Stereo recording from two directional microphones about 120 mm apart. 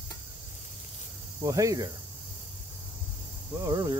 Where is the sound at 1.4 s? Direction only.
30° right (ahead or behind).